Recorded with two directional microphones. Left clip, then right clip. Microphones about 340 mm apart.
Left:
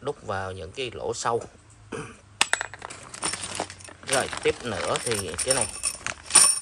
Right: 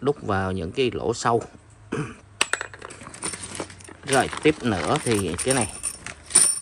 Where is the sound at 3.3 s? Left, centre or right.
Centre.